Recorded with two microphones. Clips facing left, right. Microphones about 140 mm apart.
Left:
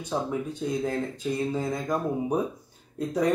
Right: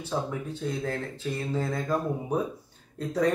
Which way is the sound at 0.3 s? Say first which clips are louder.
Left 3 dB; 15° left (ahead or behind).